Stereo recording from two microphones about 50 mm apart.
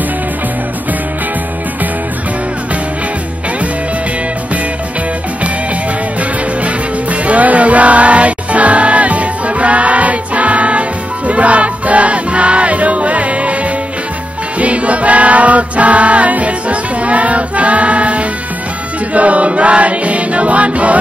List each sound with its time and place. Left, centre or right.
6.6 s music: right
14.6 s music: right
19.1 s choir: right